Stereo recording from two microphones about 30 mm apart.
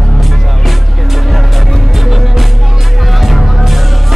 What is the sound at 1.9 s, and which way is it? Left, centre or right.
Music, centre.